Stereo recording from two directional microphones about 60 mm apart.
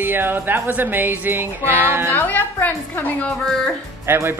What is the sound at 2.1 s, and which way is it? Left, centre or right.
A woman's voice, left.